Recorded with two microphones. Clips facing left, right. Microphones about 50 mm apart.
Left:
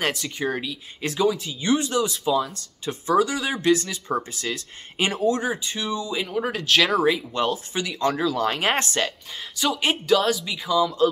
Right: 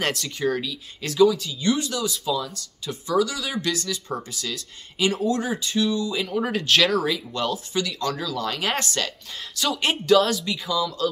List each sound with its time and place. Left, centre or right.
0.0 s speech: centre
0.4 s speech: left
5.6 s speech: centre
7.0 s speech: left
9.6 s speech: centre
9.8 s speech: centre
10.7 s speech: left